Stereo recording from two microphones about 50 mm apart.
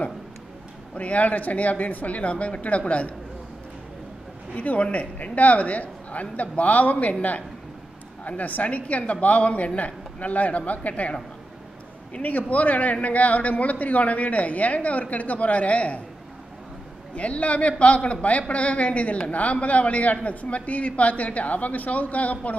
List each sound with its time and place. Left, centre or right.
0.9 s a man's voice: left
4.6 s a man's voice: left
17.1 s a man's voice: left